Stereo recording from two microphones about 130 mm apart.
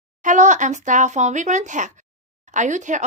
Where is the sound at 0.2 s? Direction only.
70° right (ahead or behind).